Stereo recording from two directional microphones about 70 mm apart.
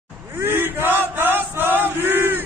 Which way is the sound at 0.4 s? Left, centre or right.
Right.